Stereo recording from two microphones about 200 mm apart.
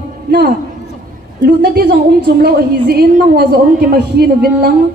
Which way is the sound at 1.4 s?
50° right (ahead or behind).